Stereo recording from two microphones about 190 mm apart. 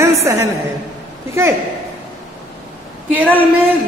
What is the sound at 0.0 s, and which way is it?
A woman's voice, 15° right (ahead or behind).